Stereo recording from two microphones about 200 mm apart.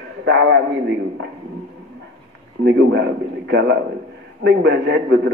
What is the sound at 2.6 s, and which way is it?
A man's voice, 60° right (ahead or behind).